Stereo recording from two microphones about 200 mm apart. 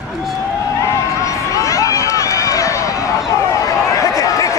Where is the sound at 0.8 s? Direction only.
15° left (ahead or behind).